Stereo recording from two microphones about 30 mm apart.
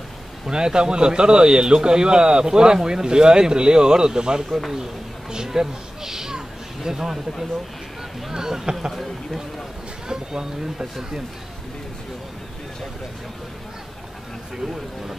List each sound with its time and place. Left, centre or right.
0.5 s a man's voice: right
5.3 s a sound: right
8.3 s speech: centre
8.9 s speech: centre
10.0 s a man's voice: right